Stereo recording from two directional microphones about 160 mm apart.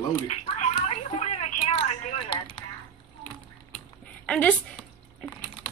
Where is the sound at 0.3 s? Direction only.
40° left (ahead or behind).